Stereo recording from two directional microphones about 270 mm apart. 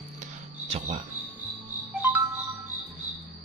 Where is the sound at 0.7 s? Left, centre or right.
Right.